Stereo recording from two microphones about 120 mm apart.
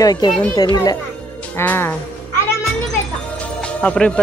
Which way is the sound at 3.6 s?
10° left (ahead or behind).